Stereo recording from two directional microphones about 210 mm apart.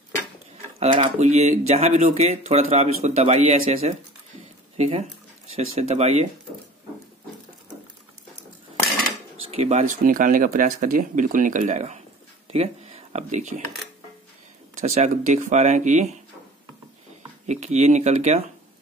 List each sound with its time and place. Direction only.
0.7 s speech: 35° right (ahead or behind)
9.5 s speech: 30° right (ahead or behind)
12.4 s a sound: 30° right (ahead or behind)
14.8 s speech: 35° right (ahead or behind)
17.5 s speech: 30° right (ahead or behind)